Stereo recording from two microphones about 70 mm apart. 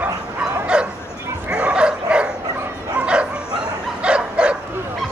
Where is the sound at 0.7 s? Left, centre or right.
Centre.